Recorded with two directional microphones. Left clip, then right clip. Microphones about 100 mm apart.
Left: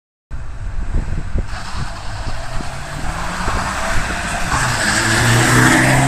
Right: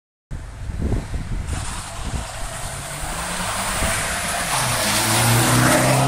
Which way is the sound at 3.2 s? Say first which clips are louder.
Left 4 dB; 90° right.